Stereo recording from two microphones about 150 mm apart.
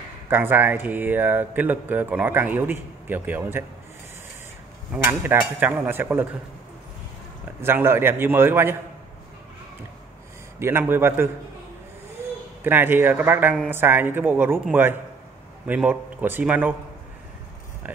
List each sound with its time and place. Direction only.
0.3 s speech: 15° right (ahead or behind)
4.9 s speech: 15° right (ahead or behind)
7.6 s speech: 15° right (ahead or behind)
10.6 s speech: 15° right (ahead or behind)
12.6 s speech: 15° right (ahead or behind)